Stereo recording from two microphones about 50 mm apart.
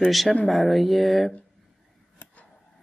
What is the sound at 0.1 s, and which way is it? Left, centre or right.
Speech, centre.